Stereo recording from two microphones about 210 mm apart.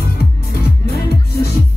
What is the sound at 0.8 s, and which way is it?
Music, 50° left (ahead or behind).